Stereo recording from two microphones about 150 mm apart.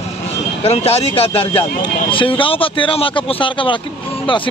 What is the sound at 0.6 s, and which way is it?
A man's voice, 45° left (ahead or behind).